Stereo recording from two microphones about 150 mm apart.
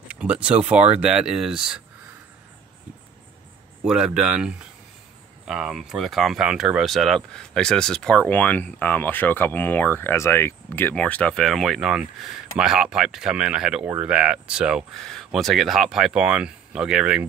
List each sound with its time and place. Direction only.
0.1 s speech: 5° right (ahead or behind)
0.7 s speech: 45° right (ahead or behind)
1.0 s speech: 5° right (ahead or behind)
3.8 s speech: 5° right (ahead or behind)